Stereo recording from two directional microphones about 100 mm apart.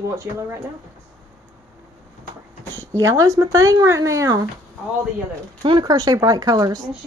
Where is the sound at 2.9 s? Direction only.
30° right (ahead or behind).